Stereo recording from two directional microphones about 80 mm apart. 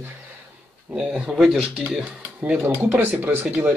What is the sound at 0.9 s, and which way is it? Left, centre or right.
Speech, centre.